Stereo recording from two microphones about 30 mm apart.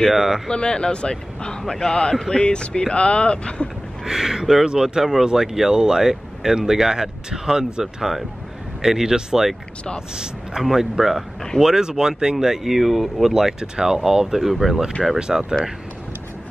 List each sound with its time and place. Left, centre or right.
0.1 s speech: centre
0.5 s speech: left
4.0 s speech: centre
10.6 s speech: centre
12.4 s speech: centre
13.3 s speech: centre
15.1 s speech: right